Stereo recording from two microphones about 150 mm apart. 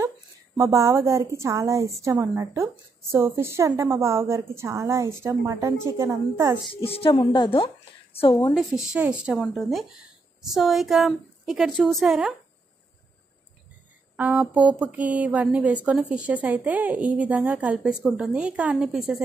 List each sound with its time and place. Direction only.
0.6 s a woman's voice: 20° right (ahead or behind)
6.7 s a woman's voice: 40° left (ahead or behind)
8.5 s a woman's voice: 5° right (ahead or behind)
14.1 s speech: 10° right (ahead or behind)